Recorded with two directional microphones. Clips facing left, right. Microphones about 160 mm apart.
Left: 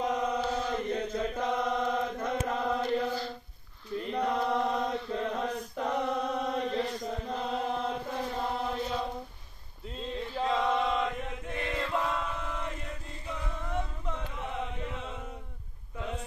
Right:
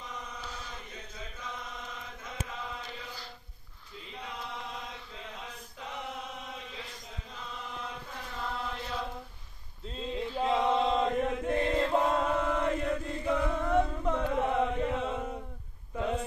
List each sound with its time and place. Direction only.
0.0 s chant: 70° left (ahead or behind); by 8.3 s 50° left (ahead or behind)
8.4 s chant: 30° left (ahead or behind)
10.4 s chant: 20° right (ahead or behind); by 11.7 s 45° right (ahead or behind)
11.7 s chant: 35° right (ahead or behind)
12.4 s chant: 65° right (ahead or behind)